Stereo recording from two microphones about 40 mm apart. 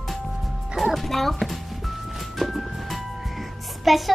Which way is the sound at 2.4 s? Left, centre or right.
Centre.